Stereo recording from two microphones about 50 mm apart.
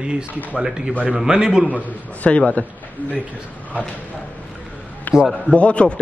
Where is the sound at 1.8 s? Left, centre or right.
Left.